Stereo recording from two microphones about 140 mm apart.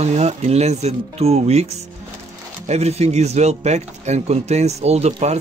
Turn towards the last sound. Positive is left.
turn(degrees=-50)  # may be behind; listen again after turning